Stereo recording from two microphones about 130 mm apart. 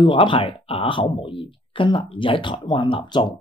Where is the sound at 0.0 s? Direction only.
40° left (ahead or behind).